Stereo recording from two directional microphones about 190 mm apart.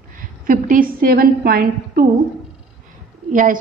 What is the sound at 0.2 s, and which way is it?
A woman's voice, 45° right (ahead or behind).